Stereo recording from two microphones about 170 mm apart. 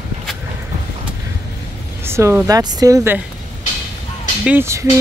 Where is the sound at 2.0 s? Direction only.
15° right (ahead or behind).